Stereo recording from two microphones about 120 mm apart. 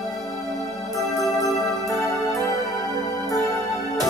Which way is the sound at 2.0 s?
30° left (ahead or behind).